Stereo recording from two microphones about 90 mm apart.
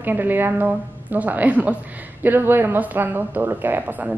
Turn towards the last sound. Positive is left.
turn(degrees=-20)  # may be behind; listen again after turning